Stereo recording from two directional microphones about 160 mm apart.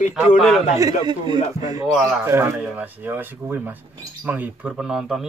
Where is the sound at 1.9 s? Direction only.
Centre (ahead or behind).